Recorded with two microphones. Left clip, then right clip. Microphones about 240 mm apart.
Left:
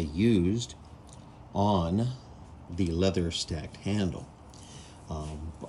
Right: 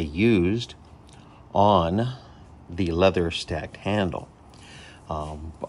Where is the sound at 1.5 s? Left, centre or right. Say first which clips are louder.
Right 9 dB; right.